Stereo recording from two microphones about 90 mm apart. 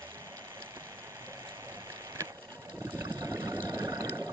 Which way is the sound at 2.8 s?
30° right (ahead or behind).